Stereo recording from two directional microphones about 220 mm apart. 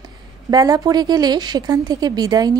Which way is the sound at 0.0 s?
15° right (ahead or behind).